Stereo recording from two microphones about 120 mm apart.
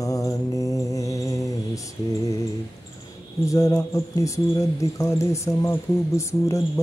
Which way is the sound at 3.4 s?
25° left (ahead or behind).